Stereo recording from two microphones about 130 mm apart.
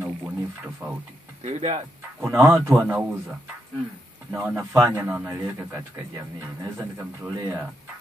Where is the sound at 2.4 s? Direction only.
20° right (ahead or behind).